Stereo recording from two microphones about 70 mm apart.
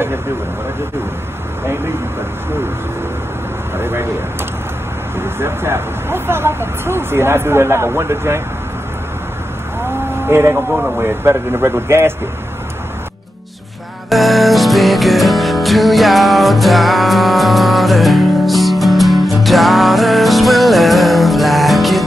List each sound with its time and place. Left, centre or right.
3.7 s speech: right
5.2 s speech: right
10.2 s speech: right
14.0 s music: centre